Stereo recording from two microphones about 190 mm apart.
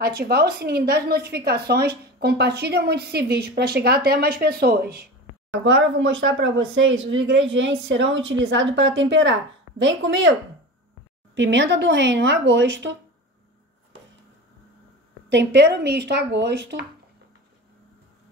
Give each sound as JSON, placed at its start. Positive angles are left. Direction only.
{"t": 0.0, "sound": "a woman's voice", "side_deg": -55}
{"t": 5.6, "sound": "a woman's voice", "side_deg": -80}
{"t": 11.3, "sound": "a woman's voice", "side_deg": -70}
{"t": 15.2, "sound": "a woman's voice", "side_deg": -65}